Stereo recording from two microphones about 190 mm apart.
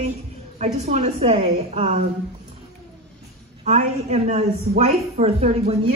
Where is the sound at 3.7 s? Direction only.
35° right (ahead or behind).